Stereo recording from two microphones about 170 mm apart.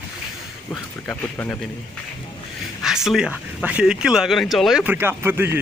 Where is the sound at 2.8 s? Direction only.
5° right (ahead or behind).